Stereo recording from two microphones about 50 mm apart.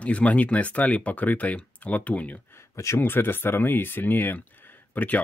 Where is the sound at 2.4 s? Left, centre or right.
Left.